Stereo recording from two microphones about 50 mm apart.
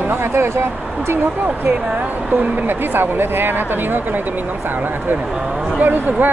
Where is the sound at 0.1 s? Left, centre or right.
Right.